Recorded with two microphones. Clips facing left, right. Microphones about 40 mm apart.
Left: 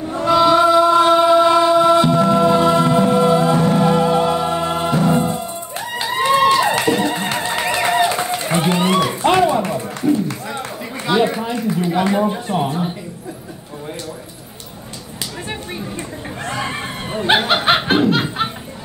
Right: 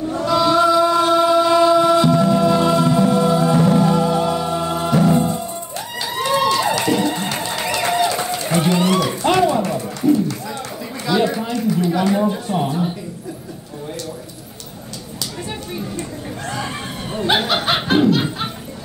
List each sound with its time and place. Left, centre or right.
0.2 s chant: left
2.1 s music: left
3.5 s music: left
5.9 s run: left
7.0 s music: left
9.6 s a sound: left
10.1 s music: left
11.2 s a sound: left
16.4 s snicker: left